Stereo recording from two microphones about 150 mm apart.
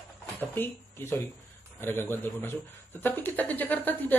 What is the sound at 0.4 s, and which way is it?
Speech, 15° left (ahead or behind).